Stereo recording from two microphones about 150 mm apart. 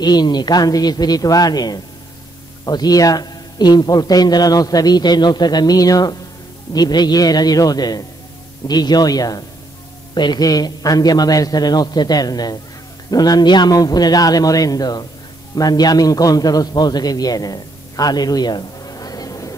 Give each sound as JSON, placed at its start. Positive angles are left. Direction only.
{"t": 0.0, "sound": "a man's voice", "side_deg": 30}